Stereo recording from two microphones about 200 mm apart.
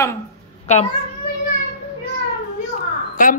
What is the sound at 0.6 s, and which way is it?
Cat, 30° left (ahead or behind).